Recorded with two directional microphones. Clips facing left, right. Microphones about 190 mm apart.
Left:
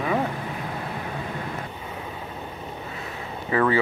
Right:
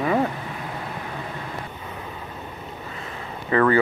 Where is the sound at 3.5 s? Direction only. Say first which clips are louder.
Right 3 dB; 10° left (ahead or behind).